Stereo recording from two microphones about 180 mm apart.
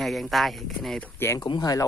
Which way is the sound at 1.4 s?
25° left (ahead or behind).